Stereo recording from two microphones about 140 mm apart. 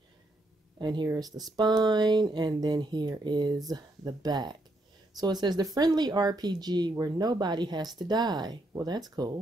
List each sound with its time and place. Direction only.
0.7 s speech: 30° right (ahead or behind)